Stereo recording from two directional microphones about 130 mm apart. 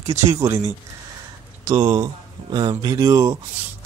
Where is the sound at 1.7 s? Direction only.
35° right (ahead or behind).